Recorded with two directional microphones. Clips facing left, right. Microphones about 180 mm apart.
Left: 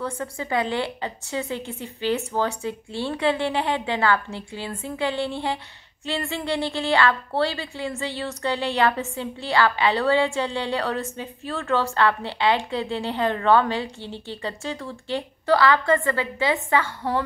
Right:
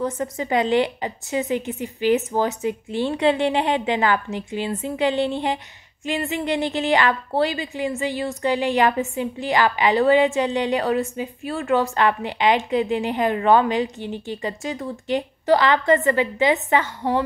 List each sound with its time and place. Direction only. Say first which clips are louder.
0.0 s a woman's voice: right 5 dB; 20° right (ahead or behind)